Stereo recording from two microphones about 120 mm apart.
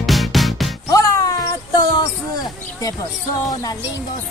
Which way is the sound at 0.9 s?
25° left (ahead or behind).